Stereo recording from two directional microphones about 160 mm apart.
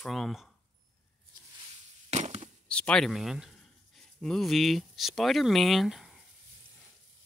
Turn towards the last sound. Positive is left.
turn(degrees=0)  # may be behind; listen again after turning